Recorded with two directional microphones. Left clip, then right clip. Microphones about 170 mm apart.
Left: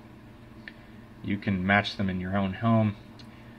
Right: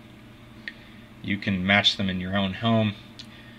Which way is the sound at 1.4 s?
20° right (ahead or behind).